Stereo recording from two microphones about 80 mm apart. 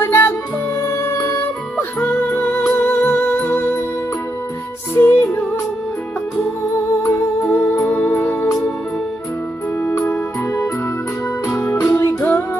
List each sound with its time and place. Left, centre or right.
0.0 s music: left
4.9 s music: left
7.0 s music: left
9.8 s organ: left
11.4 s music: left